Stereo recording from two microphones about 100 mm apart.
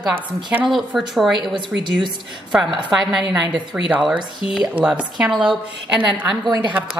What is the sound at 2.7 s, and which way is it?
Speech, 50° right (ahead or behind).